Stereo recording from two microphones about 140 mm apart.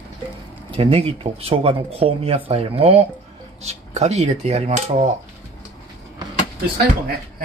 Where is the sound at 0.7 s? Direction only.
45° right (ahead or behind).